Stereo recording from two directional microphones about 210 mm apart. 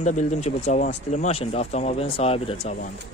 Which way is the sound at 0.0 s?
35° left (ahead or behind).